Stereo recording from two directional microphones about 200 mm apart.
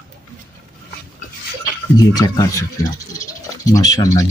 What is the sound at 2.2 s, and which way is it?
Speech, 15° left (ahead or behind).